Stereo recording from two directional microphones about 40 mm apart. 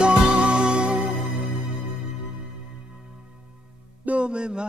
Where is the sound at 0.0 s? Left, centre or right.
Right.